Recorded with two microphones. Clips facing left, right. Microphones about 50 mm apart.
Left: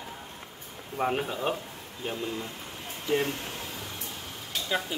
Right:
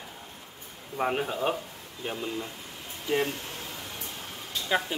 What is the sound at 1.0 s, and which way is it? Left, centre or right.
Speech, centre.